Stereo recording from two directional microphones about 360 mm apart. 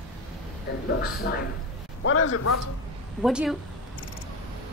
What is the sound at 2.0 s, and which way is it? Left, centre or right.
Speech, left.